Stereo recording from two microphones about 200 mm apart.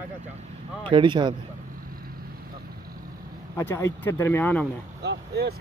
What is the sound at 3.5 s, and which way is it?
Speech, 15° left (ahead or behind).